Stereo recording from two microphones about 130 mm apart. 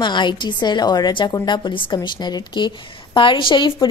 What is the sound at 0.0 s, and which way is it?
A woman's voice, 35° left (ahead or behind).